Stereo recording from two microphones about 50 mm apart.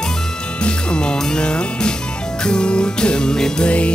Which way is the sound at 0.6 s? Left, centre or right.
Left.